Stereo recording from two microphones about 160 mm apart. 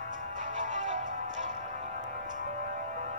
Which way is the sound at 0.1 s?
50° right (ahead or behind).